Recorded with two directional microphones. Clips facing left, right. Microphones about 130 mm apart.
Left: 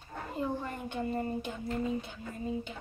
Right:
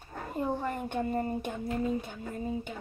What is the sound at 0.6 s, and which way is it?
Speech, 45° right (ahead or behind).